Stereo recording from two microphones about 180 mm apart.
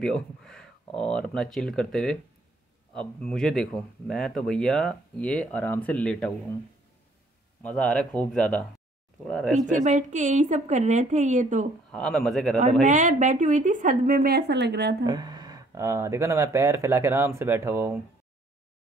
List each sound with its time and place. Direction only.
0.0 s speech: 5° left (ahead or behind)
7.6 s speech: 5° left (ahead or behind)
9.7 s a woman's voice: 45° right (ahead or behind)
11.9 s speech: 5° left (ahead or behind)
12.8 s a woman's voice: 45° right (ahead or behind); by 15.0 s 65° right (ahead or behind)
15.0 s speech: 20° right (ahead or behind)